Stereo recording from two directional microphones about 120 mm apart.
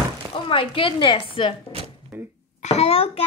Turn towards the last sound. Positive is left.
turn(degrees=55)  # may be behind; listen again after turning